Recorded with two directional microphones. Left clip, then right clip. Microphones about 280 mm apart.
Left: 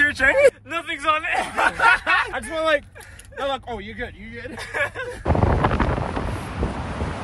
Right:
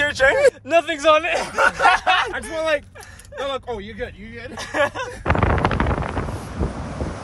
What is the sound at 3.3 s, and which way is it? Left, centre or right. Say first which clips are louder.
A man's voice: even; centre.